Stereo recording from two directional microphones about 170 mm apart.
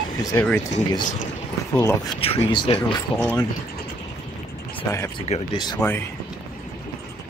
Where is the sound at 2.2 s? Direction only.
35° left (ahead or behind).